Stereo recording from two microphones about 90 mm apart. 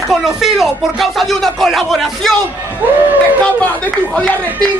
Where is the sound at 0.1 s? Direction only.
5° right (ahead or behind).